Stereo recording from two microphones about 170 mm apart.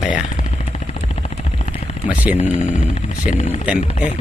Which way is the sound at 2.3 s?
40° left (ahead or behind).